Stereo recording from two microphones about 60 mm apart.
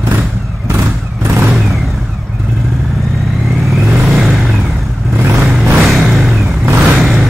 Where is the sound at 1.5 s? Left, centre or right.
Centre.